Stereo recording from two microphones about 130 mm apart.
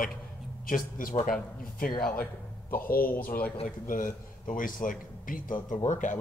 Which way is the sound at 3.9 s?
90° left.